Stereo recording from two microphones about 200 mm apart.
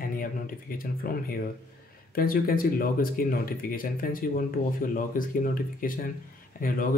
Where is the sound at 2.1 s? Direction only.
45° left (ahead or behind).